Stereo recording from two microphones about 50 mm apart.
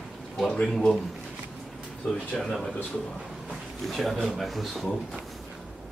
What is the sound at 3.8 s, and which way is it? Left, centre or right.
Speech, centre.